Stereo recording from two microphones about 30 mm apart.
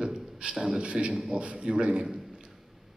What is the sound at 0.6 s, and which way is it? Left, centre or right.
A man's voice, right.